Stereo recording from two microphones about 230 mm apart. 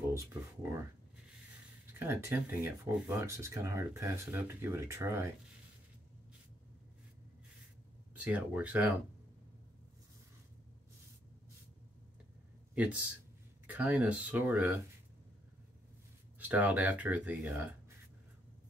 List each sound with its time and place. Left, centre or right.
0.1 s speech: centre
2.0 s speech: centre
8.2 s speech: centre
13.7 s speech: centre
16.3 s speech: centre